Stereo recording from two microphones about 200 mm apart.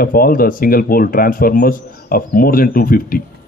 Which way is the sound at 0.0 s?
45° left (ahead or behind).